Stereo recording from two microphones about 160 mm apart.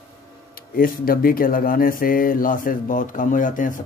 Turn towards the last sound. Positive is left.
turn(degrees=55)  # may be behind; listen again after turning